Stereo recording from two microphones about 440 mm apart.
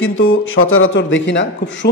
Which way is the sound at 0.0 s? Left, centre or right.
Left.